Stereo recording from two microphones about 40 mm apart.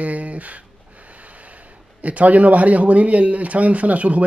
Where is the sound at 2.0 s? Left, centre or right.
Right.